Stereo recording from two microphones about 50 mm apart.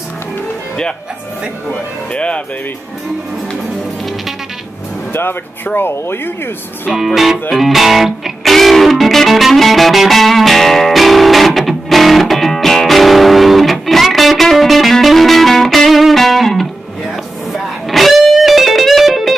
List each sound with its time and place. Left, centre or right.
2.1 s speech: left
5.8 s speech: left
7.1 s music: centre